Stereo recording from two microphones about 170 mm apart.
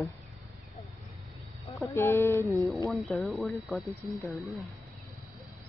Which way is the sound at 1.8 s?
15° left (ahead or behind).